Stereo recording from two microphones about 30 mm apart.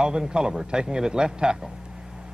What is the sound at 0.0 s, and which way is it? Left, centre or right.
A man's voice, right.